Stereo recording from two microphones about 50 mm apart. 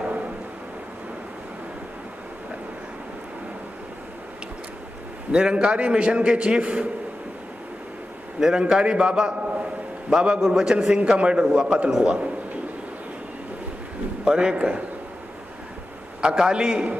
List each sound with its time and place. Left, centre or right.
5.3 s a man's voice: centre
8.4 s a man's voice: centre
14.2 s a man's voice: centre
16.2 s a man's voice: centre